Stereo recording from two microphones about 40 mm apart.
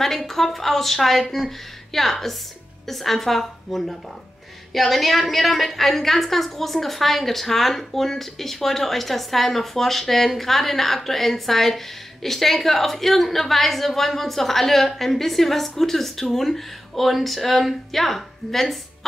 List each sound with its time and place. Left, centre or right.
0.0 s a woman's voice: centre